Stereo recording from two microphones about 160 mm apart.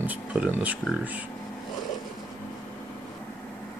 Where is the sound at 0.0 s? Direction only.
10° right (ahead or behind).